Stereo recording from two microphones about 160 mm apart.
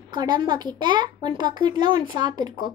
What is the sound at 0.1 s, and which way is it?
A child's voice, 25° right (ahead or behind).